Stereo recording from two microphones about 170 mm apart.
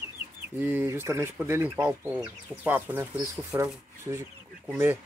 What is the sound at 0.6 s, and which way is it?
Speech, 10° right (ahead or behind).